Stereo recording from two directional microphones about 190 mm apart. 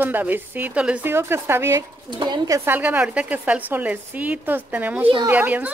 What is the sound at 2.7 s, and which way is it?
A woman's voice, 10° right (ahead or behind).